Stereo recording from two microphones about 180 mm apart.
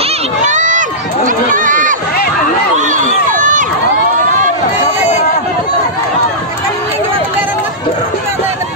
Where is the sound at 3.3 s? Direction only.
45° right (ahead or behind).